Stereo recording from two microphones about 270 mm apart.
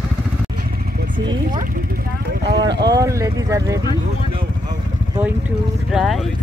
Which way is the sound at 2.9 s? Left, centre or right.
Centre.